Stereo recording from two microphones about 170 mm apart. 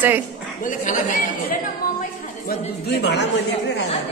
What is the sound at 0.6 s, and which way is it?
Speech, 50° left (ahead or behind).